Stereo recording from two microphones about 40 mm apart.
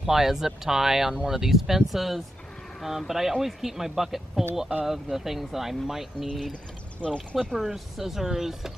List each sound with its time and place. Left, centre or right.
0.0 s speech: centre
7.0 s speech: left
7.5 s speech: centre